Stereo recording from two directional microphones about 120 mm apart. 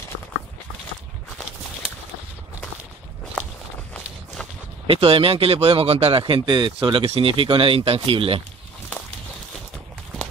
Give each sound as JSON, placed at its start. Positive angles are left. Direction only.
{"t": 4.8, "sound": "speech", "side_deg": -50}